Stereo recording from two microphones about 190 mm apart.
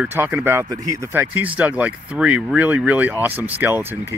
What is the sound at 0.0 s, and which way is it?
Speech, 10° right (ahead or behind).